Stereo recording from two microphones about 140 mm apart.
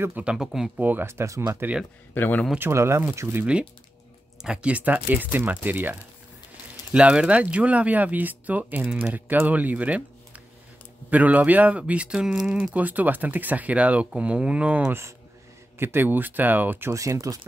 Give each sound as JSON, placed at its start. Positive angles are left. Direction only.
{"t": 0.0, "sound": "speech", "side_deg": -10}
{"t": 2.1, "sound": "speech", "side_deg": 15}
{"t": 2.6, "sound": "speech", "side_deg": -20}